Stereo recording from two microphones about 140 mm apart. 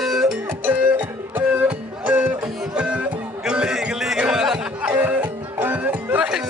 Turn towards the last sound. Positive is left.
turn(degrees=-10)  # may be behind; listen again after turning